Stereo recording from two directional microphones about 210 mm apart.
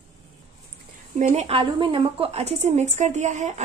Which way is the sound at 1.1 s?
30° right (ahead or behind).